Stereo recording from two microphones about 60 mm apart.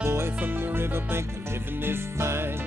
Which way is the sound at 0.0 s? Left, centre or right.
Right.